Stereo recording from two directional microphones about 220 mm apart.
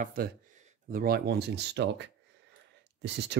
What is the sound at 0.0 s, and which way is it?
Speech, 40° right (ahead or behind).